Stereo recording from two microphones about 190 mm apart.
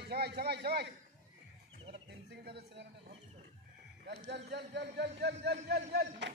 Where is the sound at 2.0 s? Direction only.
60° right (ahead or behind).